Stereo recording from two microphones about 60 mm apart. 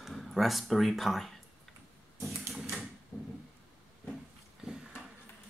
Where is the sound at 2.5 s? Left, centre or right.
Centre.